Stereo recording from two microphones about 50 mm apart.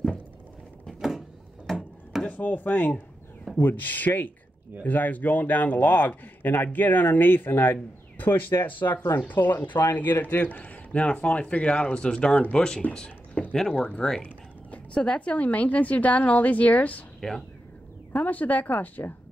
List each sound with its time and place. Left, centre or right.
0.9 s a sound: centre
2.2 s a man's voice: left
9.3 s a man's voice: left; by 12.8 s centre
13.3 s a sound: left
13.7 s speech: left
17.2 s speech: centre
18.1 s a man's voice: left